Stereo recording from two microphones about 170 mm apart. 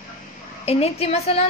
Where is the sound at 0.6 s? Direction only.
35° left (ahead or behind).